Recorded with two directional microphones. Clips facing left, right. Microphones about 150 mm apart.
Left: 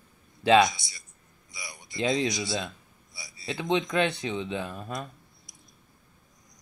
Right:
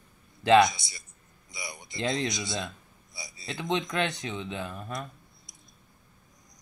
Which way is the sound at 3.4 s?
20° left (ahead or behind).